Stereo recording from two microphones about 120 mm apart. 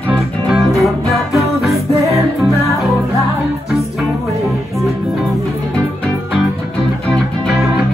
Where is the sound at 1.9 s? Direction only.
25° right (ahead or behind).